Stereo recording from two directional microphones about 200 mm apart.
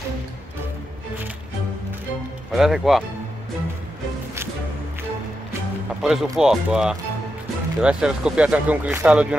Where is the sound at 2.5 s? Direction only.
Centre (ahead or behind).